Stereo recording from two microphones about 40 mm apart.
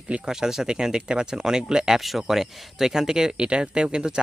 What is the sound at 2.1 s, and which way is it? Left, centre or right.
Speech, centre.